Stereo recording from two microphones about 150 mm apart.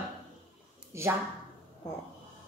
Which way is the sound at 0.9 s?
20° right (ahead or behind).